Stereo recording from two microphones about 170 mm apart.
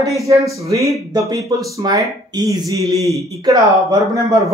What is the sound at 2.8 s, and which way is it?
Speech, centre (ahead or behind).